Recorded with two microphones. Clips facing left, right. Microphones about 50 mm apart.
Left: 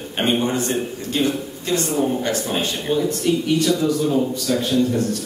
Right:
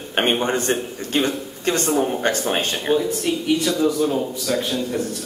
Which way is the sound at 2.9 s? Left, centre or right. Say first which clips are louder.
Left 2 dB; centre.